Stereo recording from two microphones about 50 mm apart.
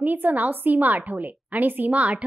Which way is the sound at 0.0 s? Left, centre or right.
Right.